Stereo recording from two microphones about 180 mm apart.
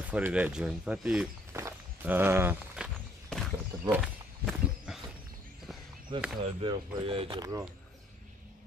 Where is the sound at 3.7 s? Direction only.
20° right (ahead or behind).